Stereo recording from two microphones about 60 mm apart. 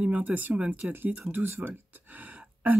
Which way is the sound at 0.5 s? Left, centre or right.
Centre.